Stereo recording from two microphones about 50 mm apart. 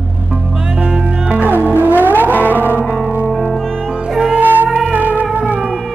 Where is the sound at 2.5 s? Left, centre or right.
Right.